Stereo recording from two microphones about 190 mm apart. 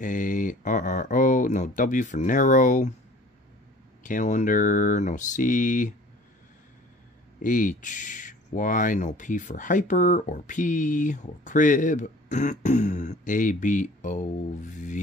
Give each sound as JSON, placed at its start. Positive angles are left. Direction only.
{"t": 0.0, "sound": "speech", "side_deg": 45}
{"t": 4.0, "sound": "speech", "side_deg": 40}
{"t": 7.4, "sound": "speech", "side_deg": 45}